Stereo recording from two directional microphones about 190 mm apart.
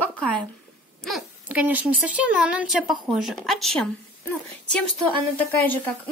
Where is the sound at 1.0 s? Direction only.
5° right (ahead or behind).